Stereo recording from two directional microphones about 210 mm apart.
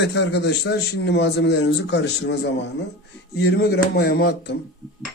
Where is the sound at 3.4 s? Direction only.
50° left (ahead or behind).